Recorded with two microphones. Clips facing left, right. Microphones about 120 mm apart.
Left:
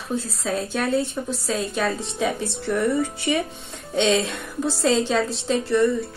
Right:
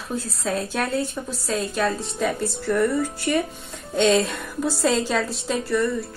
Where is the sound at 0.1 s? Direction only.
Centre (ahead or behind).